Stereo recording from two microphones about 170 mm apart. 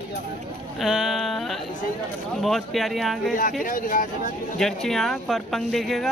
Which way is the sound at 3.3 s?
55° left (ahead or behind).